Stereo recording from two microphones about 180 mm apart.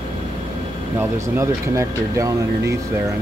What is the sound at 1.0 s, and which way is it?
Speech, 15° right (ahead or behind).